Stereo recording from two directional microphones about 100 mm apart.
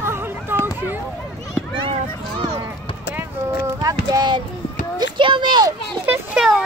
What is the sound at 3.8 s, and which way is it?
Child singing, 45° right (ahead or behind).